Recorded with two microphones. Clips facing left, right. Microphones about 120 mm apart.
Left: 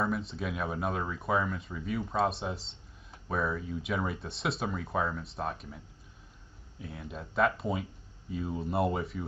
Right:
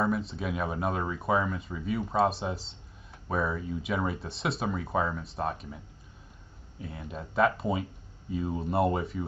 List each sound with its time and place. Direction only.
0.0 s speech: centre (ahead or behind)
6.8 s speech: centre (ahead or behind)